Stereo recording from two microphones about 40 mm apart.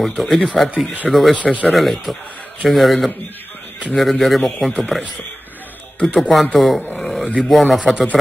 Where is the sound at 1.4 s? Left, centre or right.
Right.